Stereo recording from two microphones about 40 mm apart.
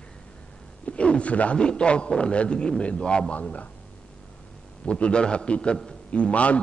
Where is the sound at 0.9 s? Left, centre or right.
Left.